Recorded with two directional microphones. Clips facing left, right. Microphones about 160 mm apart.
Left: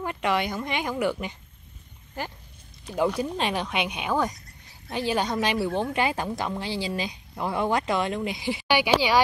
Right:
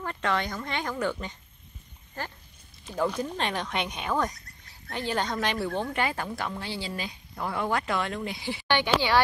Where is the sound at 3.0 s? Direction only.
10° left (ahead or behind).